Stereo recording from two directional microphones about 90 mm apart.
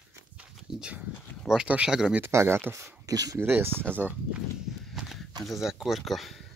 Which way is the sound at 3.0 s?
45° right (ahead or behind).